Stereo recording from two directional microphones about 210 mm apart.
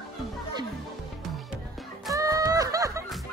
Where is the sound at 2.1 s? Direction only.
15° right (ahead or behind).